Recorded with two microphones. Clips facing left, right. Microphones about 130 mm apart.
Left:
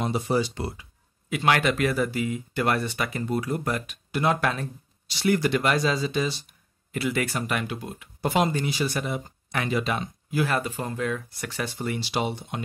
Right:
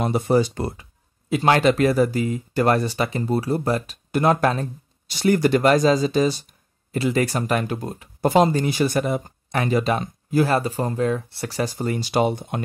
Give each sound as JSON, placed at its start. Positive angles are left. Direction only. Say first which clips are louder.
{"t": 0.0, "sound": "speech", "louder": "right 6 dB", "side_deg": -50}
{"t": 1.3, "sound": "speech", "louder": "right 5 dB", "side_deg": -30}
{"t": 8.6, "sound": "speech", "louder": "right 7 dB", "side_deg": -50}